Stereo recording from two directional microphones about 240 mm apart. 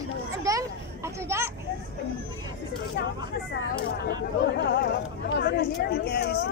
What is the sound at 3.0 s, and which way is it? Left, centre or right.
Speech, left.